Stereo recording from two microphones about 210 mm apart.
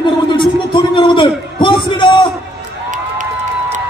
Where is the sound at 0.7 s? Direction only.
25° left (ahead or behind).